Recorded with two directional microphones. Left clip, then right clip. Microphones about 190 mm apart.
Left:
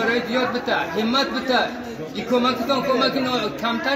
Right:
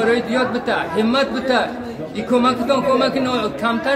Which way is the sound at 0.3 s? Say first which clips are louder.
Right 2 dB; 5° right (ahead or behind).